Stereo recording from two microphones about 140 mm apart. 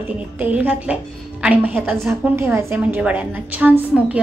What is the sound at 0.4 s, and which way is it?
A woman's voice, 10° right (ahead or behind).